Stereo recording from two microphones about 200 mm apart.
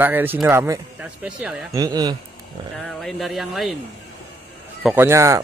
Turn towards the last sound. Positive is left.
turn(degrees=-15)  # may be behind; listen again after turning